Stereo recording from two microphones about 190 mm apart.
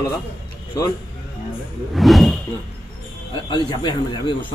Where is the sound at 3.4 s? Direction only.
25° left (ahead or behind).